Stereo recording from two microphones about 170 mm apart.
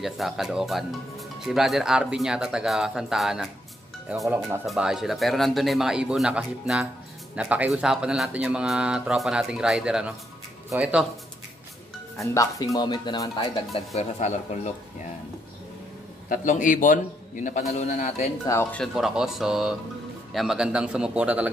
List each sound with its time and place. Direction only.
0.0 s speech: centre (ahead or behind)
12.2 s speech: 20° left (ahead or behind); by 15.1 s 45° left (ahead or behind)
16.3 s a man's voice: 50° left (ahead or behind)
18.4 s speech: 15° left (ahead or behind)
18.9 s speech: centre (ahead or behind)